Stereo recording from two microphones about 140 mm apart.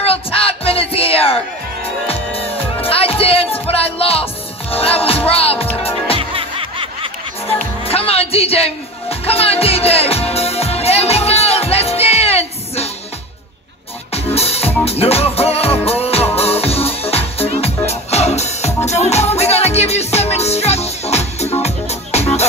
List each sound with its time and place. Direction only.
0.0 s music: 45° left (ahead or behind)
6.1 s snicker: 40° right (ahead or behind)
7.8 s music: 45° left (ahead or behind)
14.1 s music: 45° left (ahead or behind)